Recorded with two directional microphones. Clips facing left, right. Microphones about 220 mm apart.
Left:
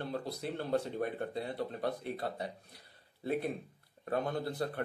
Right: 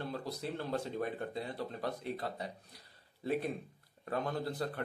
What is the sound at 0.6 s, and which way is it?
Speech, 30° left (ahead or behind).